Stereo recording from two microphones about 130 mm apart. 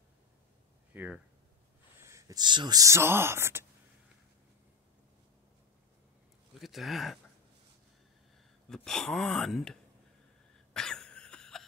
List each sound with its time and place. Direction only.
0.9 s speech: 10° right (ahead or behind)
6.6 s speech: centre (ahead or behind)
8.6 s speech: 5° left (ahead or behind)
10.7 s cough: 5° left (ahead or behind)